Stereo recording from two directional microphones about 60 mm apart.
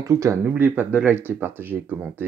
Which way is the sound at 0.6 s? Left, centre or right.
Right.